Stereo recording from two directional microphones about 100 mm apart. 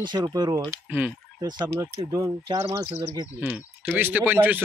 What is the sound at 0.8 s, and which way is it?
Speech, 15° right (ahead or behind).